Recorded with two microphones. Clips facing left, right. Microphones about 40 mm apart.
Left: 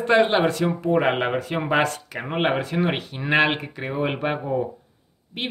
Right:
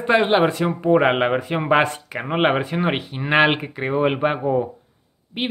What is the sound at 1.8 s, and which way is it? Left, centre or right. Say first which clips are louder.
Speech: right 2 dB; right.